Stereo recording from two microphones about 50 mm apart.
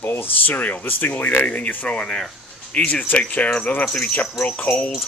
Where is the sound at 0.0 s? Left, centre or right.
Left.